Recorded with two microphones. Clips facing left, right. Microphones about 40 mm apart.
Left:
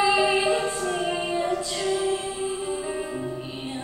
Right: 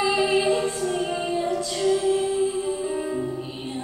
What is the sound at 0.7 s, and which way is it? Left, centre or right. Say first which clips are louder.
Music: right 1 dB; left.